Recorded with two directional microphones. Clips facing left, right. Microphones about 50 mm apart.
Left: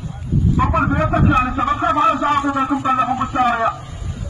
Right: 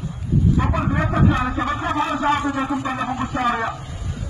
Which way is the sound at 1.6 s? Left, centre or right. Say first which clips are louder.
Left 6 dB; left.